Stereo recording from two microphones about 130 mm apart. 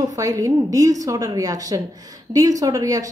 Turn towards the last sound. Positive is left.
turn(degrees=-25)  # may be behind; listen again after turning